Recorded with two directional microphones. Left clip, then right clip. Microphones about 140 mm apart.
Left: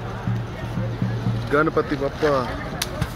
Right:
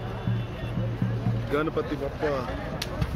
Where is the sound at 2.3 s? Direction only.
45° left (ahead or behind).